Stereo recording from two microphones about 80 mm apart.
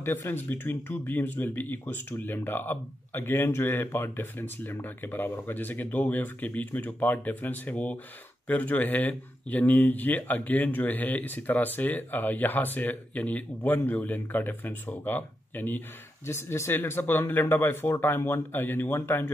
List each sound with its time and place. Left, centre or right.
0.0 s speech: left